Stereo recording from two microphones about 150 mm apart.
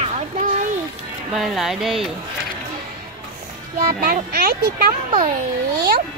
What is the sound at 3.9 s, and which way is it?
Speech, 90° right.